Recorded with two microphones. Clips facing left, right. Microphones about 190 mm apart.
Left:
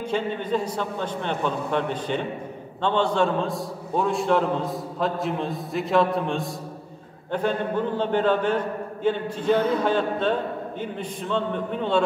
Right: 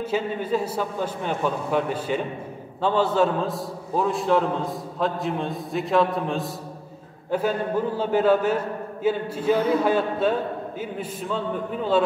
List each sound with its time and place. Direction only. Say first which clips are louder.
0.0 s a man's voice: right 1 dB; 5° right (ahead or behind)